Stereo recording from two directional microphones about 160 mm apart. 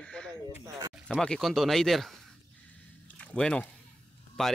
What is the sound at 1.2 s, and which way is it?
Speech, 5° left (ahead or behind).